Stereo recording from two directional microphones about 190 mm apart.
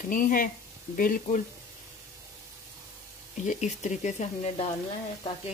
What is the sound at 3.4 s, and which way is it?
Speech, 40° left (ahead or behind).